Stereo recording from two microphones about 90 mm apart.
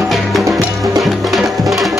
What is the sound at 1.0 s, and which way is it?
Music, centre (ahead or behind).